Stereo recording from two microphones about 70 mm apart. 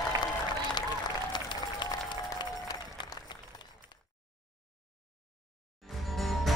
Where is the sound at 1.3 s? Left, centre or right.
Left.